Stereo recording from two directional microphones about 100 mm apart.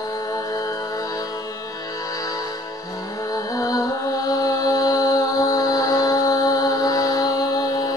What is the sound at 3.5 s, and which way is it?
Music, 35° left (ahead or behind).